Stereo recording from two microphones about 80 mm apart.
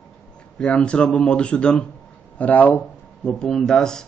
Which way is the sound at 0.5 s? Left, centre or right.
Centre.